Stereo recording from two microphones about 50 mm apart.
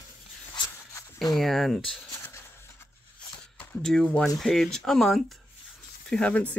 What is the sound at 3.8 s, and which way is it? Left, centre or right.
Speech, centre.